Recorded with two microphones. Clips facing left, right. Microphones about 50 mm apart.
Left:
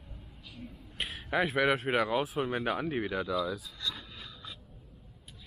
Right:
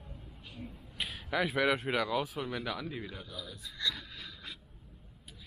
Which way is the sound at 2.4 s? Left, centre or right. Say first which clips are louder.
Left 6 dB; left.